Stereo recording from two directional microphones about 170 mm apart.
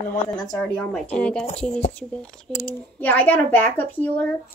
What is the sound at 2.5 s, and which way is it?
Speech, centre (ahead or behind).